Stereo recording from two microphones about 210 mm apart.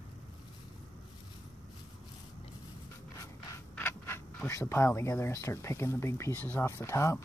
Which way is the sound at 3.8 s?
10° left (ahead or behind).